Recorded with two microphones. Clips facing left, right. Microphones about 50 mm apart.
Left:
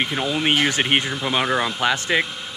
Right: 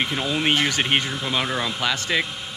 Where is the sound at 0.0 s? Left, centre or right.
Centre.